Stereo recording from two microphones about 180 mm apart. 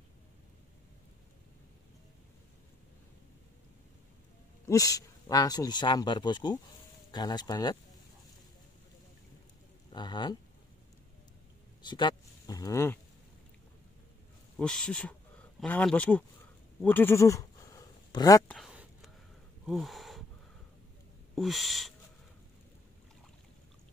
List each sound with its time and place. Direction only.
4.6 s speech: 20° left (ahead or behind)
9.9 s speech: 25° left (ahead or behind)
11.8 s speech: 25° left (ahead or behind)
14.6 s speech: 5° left (ahead or behind)
16.8 s a sound: 10° left (ahead or behind)
18.5 s a sound: 5° right (ahead or behind)
21.4 s speech: centre (ahead or behind)